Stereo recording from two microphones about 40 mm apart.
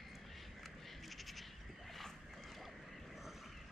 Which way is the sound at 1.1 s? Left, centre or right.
Centre.